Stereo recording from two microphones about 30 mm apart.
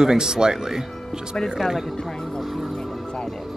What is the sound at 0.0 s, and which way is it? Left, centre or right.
Speech, right.